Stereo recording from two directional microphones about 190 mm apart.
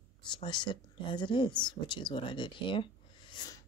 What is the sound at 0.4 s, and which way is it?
Speech, 25° left (ahead or behind).